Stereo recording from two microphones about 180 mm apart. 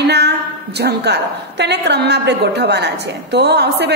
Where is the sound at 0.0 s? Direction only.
65° right (ahead or behind).